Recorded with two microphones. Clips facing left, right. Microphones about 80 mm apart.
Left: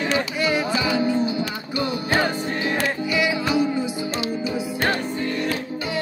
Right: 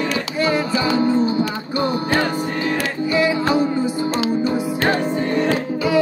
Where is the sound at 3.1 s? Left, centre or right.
Right.